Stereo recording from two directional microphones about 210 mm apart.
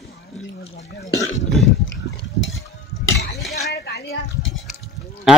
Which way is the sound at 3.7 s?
50° left (ahead or behind).